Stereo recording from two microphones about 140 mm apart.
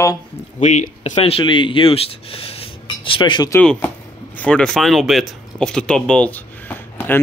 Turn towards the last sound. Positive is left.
turn(degrees=15)  # may be behind; listen again after turning